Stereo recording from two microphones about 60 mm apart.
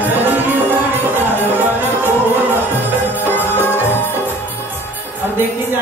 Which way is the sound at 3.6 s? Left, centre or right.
Left.